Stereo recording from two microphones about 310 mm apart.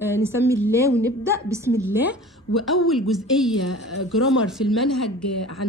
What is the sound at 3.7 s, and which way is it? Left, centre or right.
Speech, left.